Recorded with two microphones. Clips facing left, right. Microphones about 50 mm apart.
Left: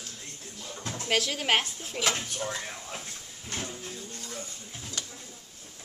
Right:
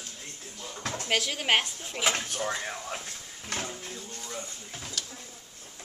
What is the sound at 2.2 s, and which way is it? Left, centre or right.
Speech, right.